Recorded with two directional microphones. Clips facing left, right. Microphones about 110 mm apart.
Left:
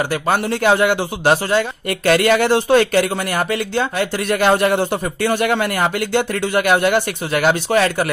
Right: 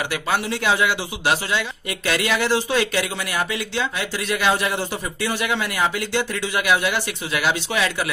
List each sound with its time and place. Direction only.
0.1 s a man's voice: 45° left (ahead or behind)